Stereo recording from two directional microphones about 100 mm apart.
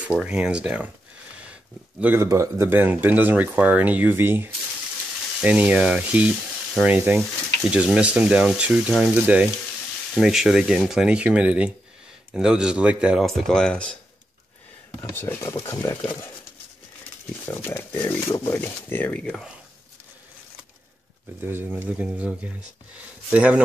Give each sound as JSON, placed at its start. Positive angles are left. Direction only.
{"t": 0.2, "sound": "speech", "side_deg": -10}
{"t": 1.4, "sound": "a sound", "side_deg": -10}
{"t": 2.1, "sound": "speech", "side_deg": -30}
{"t": 13.2, "sound": "speech", "side_deg": 0}
{"t": 15.1, "sound": "speech", "side_deg": 20}
{"t": 17.5, "sound": "speech", "side_deg": 25}
{"t": 21.4, "sound": "speech", "side_deg": -20}